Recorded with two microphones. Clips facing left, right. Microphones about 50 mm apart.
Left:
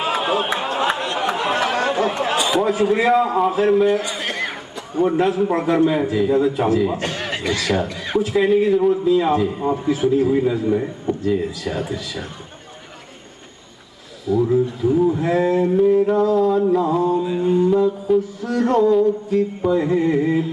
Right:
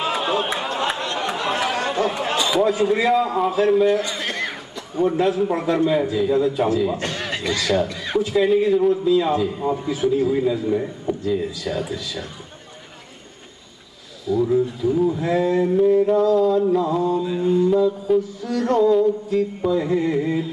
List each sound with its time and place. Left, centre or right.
0.0 s chatter: centre
2.5 s a man's voice: centre
11.2 s speech: left
11.6 s a man's voice: centre
14.3 s a man's voice: centre
15.6 s a man's voice: centre
18.1 s mantra: centre
18.5 s a man's voice: centre
20.2 s speech: left